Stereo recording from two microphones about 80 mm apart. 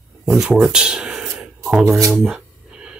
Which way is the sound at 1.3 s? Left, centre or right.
Centre.